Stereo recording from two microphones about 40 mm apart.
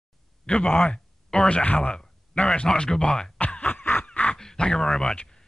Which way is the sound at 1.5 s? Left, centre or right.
Left.